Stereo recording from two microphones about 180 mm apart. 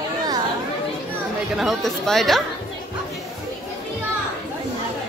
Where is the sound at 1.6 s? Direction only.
Centre (ahead or behind).